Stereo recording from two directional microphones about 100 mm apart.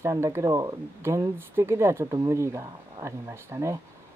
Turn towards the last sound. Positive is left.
turn(degrees=-30)  # may be behind; listen again after turning